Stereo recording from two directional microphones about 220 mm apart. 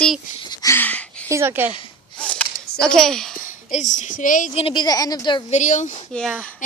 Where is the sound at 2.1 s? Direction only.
5° left (ahead or behind).